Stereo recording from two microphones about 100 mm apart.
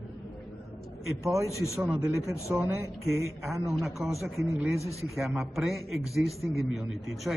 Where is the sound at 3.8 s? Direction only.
Centre (ahead or behind).